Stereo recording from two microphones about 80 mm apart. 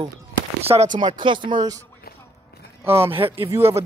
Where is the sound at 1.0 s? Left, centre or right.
Right.